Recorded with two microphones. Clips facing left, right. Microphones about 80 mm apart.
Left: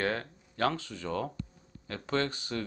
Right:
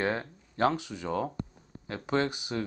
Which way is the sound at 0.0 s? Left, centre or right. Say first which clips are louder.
Right 2 dB; centre.